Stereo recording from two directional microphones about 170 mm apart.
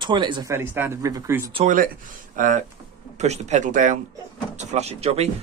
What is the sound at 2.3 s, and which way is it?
Speech, 50° right (ahead or behind).